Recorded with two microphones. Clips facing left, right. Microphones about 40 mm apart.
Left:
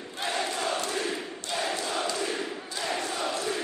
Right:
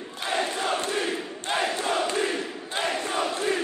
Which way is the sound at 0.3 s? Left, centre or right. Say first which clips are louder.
Right 4 dB; right.